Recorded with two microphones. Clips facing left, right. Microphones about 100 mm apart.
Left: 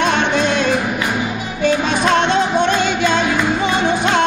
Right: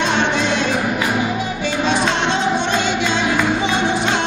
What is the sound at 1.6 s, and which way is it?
Music, 50° left (ahead or behind).